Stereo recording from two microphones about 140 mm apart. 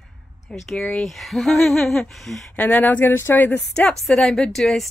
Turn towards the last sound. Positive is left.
turn(degrees=0)  # may be behind; listen again after turning